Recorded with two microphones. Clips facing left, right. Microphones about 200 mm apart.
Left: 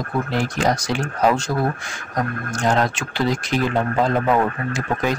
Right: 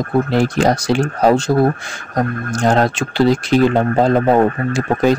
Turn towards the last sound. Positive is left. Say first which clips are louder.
# right 8 dB
turn(degrees=-30)  # may be behind; listen again after turning